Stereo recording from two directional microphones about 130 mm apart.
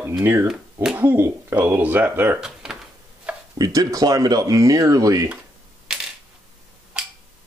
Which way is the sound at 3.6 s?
25° right (ahead or behind).